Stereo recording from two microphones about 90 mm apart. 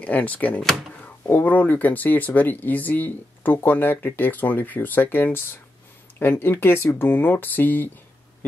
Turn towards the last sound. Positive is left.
turn(degrees=20)  # may be behind; listen again after turning